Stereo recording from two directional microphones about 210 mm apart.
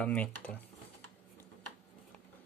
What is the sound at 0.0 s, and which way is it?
Speech, 5° left (ahead or behind).